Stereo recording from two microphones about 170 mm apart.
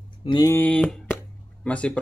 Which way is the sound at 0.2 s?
30° left (ahead or behind).